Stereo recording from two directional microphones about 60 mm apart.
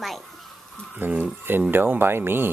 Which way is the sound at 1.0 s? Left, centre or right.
Right.